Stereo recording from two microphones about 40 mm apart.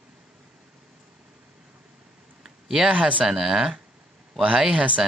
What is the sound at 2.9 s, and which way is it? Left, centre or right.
Speech, right.